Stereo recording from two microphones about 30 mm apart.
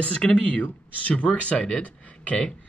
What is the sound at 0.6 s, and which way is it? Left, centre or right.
Speech, left.